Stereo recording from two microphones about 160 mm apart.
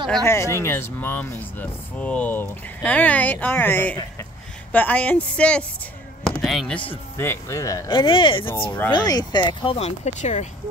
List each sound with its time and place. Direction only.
0.2 s speech: 15° left (ahead or behind)
6.2 s basketball bounce: centre (ahead or behind)
6.9 s speech: 15° left (ahead or behind); by 10.5 s 45° left (ahead or behind)